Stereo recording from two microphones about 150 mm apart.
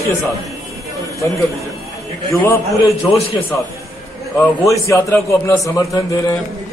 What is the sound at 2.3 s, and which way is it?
Speech, 15° left (ahead or behind).